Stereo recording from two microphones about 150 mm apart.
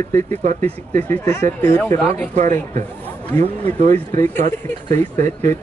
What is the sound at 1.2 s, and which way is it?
Speech, 15° left (ahead or behind).